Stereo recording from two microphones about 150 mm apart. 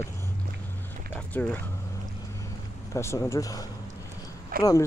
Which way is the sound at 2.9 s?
20° left (ahead or behind).